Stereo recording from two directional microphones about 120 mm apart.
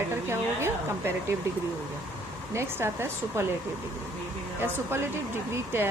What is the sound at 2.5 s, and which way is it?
Speech, 20° right (ahead or behind).